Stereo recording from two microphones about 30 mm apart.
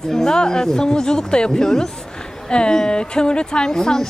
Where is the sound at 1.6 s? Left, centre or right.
Centre.